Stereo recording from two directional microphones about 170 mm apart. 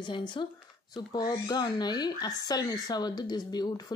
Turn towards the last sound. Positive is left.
turn(degrees=25)  # may be behind; listen again after turning